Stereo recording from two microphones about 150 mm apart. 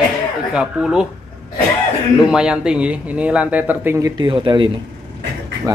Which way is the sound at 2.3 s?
5° right (ahead or behind).